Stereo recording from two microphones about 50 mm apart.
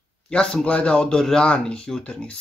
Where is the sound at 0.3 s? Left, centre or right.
Centre.